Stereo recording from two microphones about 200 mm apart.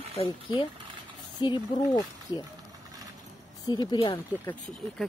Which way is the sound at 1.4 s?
25° left (ahead or behind).